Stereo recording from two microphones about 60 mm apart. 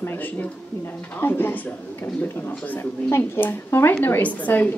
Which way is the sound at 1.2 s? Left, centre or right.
Left.